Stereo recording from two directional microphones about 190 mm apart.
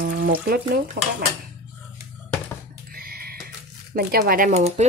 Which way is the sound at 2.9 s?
50° right (ahead or behind).